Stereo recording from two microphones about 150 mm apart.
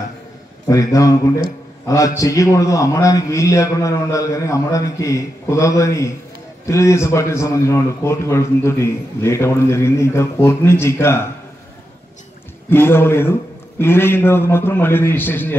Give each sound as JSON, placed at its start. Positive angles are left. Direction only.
{"t": 0.7, "sound": "a man's voice", "side_deg": 20}
{"t": 12.6, "sound": "a man's voice", "side_deg": 15}